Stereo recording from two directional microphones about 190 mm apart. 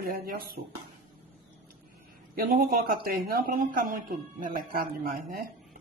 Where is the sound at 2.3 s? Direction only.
50° right (ahead or behind).